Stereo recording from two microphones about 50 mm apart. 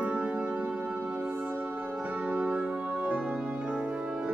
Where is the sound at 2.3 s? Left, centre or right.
Right.